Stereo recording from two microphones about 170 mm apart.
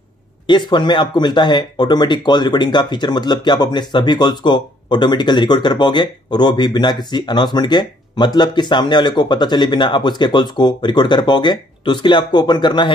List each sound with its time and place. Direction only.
0.5 s speech: 25° left (ahead or behind)